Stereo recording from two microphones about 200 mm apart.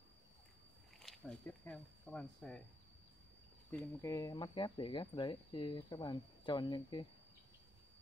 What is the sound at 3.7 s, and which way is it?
Speech, 15° left (ahead or behind).